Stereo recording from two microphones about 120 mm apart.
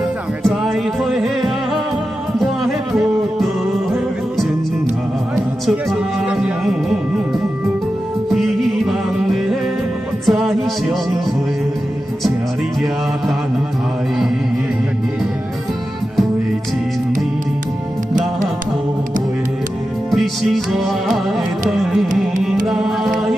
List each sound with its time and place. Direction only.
0.4 s music: centre (ahead or behind)
5.7 s music: 5° right (ahead or behind)
10.2 s music: centre (ahead or behind)
20.1 s music: centre (ahead or behind)